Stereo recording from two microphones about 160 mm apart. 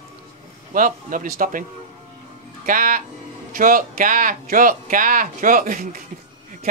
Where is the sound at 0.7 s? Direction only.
55° right (ahead or behind).